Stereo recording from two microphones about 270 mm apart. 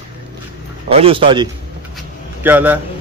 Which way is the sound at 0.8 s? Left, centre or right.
Right.